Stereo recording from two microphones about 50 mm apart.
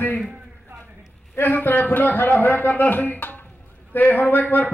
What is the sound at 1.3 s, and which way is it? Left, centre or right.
A man's voice, left.